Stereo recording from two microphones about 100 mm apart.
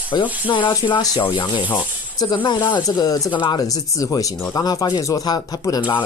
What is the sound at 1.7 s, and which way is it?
Speech, 45° left (ahead or behind).